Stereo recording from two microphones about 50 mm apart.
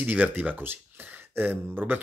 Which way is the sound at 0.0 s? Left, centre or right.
Right.